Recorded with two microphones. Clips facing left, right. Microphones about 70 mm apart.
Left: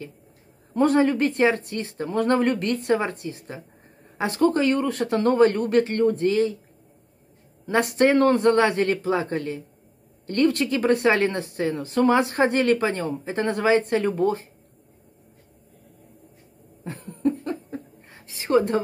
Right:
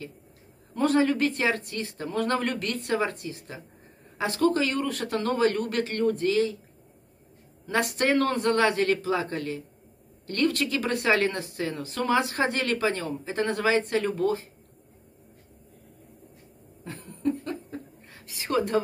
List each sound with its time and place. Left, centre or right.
0.7 s speech: left
7.6 s speech: left
16.8 s laughter: left
18.1 s a sound: left